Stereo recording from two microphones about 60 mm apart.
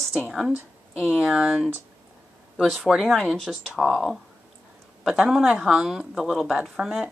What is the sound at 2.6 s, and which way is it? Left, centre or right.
Speech, centre.